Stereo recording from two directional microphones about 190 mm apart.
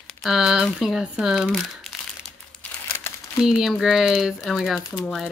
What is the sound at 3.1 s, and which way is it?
Crumpling, 15° left (ahead or behind).